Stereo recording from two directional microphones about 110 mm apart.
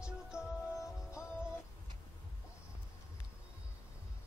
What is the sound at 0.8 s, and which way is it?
Music, 25° left (ahead or behind).